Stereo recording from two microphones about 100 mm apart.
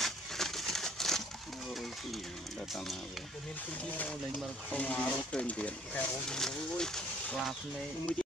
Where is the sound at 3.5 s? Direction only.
15° left (ahead or behind).